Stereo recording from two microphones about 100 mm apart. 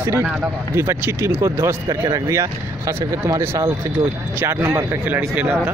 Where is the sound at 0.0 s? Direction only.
25° right (ahead or behind).